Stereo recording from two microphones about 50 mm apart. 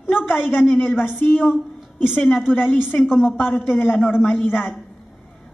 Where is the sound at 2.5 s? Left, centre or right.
Left.